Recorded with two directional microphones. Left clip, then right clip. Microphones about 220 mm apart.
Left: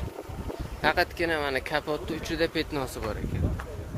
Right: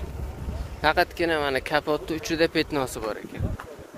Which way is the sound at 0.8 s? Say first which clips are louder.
Right 3 dB; 20° right (ahead or behind).